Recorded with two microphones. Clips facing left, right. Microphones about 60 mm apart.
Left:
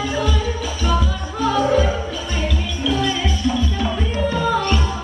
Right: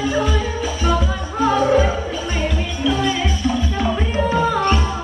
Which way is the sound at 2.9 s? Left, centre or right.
Right.